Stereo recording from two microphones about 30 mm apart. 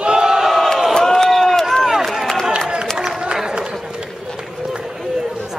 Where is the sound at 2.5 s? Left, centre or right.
Right.